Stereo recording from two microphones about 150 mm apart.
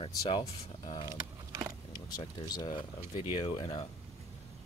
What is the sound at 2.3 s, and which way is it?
Speech, 25° left (ahead or behind).